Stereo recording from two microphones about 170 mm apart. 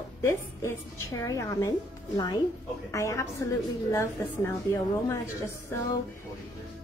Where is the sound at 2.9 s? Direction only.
20° left (ahead or behind).